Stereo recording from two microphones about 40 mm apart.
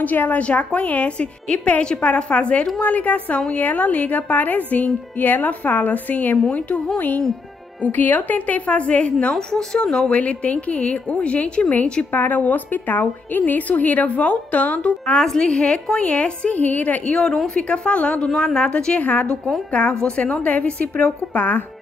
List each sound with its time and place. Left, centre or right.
0.0 s a woman's voice: left
0.4 s a woman's voice: left
9.3 s a woman's voice: centre
10.0 s a woman's voice: left
11.7 s a woman's voice: left
15.2 s a woman's voice: centre
16.0 s a woman's voice: left
17.1 s a woman's voice: left
17.6 s a woman's voice: left
18.4 s a woman's voice: centre
18.9 s a woman's voice: left
19.9 s a woman's voice: left
20.8 s a woman's voice: left